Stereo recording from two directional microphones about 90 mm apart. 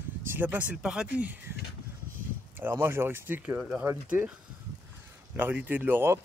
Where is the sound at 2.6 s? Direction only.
25° right (ahead or behind).